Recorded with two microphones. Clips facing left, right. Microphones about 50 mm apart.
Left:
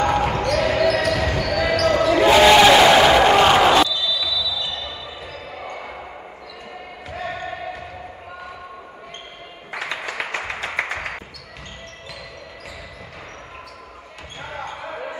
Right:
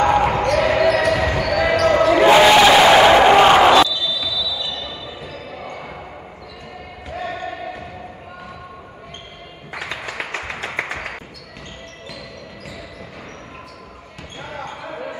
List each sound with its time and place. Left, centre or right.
0.0 s basketball bounce: centre
2.4 s music: centre
4.0 s basketball bounce: centre
7.1 s basketball bounce: centre
9.7 s music: centre
14.4 s basketball bounce: centre